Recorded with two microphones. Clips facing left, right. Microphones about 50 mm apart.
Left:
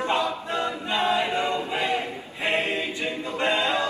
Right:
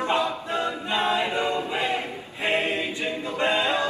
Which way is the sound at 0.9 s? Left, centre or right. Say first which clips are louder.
Left 1 dB; right.